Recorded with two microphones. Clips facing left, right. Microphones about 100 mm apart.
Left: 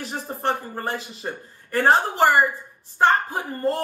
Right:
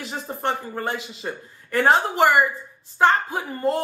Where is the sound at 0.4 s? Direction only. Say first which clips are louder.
Even; 45° left (ahead or behind).